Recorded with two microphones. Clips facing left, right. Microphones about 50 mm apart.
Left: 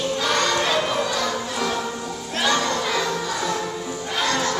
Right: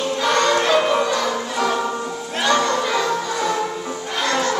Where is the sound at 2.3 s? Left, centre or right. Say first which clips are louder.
Right 3 dB; centre.